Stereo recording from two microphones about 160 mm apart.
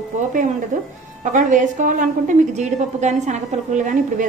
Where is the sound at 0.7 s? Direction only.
50° right (ahead or behind).